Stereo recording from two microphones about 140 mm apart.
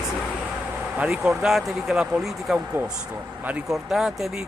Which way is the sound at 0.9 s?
5° right (ahead or behind).